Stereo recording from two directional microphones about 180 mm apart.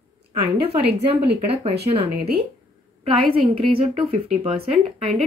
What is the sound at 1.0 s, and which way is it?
Speech, 35° right (ahead or behind).